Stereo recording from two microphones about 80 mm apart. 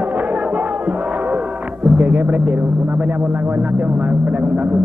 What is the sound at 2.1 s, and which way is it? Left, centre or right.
Speech, centre.